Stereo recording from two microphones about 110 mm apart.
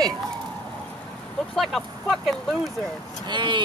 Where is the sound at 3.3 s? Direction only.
45° right (ahead or behind).